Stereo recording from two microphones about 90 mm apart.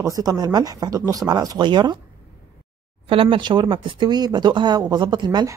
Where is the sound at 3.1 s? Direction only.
80° right.